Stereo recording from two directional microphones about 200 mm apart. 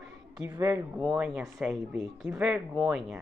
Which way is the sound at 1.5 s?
Centre (ahead or behind).